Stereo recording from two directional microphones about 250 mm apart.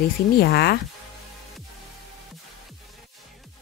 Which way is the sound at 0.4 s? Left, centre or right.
Left.